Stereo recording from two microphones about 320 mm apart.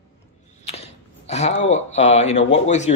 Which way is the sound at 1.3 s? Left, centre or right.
Left.